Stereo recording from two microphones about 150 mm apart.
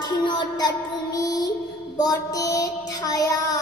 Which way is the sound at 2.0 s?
25° left (ahead or behind).